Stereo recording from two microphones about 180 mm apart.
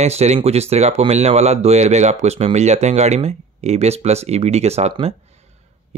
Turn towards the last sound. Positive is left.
turn(degrees=-35)  # may be behind; listen again after turning